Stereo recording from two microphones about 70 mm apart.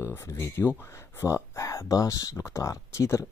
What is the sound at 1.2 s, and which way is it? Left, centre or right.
Speech, left.